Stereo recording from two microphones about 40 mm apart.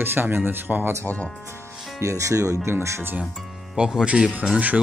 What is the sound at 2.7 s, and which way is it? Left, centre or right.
Speech, right.